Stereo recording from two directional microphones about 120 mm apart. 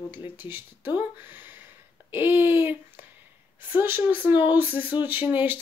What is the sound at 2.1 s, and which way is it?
Speech, 20° right (ahead or behind).